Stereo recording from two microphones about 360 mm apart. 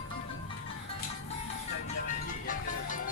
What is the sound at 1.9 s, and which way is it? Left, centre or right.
Music, left.